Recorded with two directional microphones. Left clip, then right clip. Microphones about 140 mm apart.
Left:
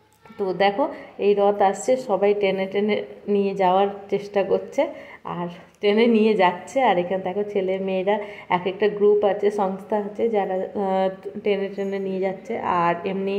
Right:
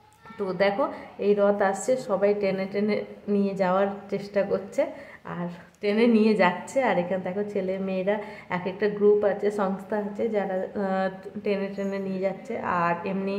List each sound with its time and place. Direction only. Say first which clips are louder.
0.4 s a woman's voice: left 4 dB; 20° left (ahead or behind)